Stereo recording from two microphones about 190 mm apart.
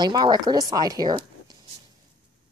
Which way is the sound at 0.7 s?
20° right (ahead or behind).